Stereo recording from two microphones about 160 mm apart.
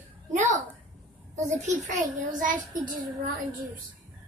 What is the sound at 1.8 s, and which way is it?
A child's voice, 50° right (ahead or behind).